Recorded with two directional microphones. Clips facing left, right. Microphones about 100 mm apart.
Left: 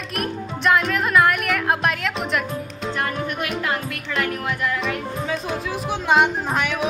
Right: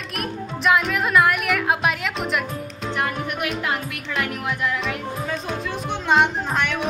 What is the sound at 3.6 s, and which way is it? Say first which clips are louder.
Speech: left 1 dB; 15° right (ahead or behind).